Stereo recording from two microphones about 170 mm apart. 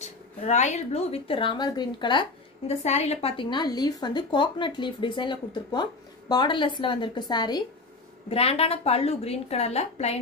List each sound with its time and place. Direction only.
0.0 s a woman's voice: 45° left (ahead or behind); by 2.2 s 25° left (ahead or behind)
2.8 s a woman's voice: 40° left (ahead or behind); by 7.6 s 25° left (ahead or behind)
8.3 s a woman's voice: 35° left (ahead or behind)